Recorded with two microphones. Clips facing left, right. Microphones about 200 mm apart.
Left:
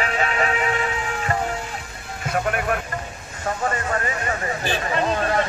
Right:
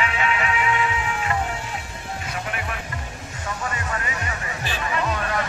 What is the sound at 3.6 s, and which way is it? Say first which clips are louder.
Music: left 6 dB; 45° left (ahead or behind).